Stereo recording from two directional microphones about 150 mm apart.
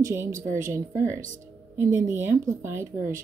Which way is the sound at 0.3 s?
20° right (ahead or behind).